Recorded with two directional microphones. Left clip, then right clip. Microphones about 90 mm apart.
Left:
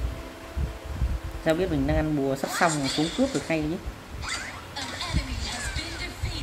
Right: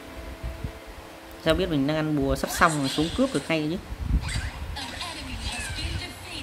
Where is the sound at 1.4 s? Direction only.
35° right (ahead or behind).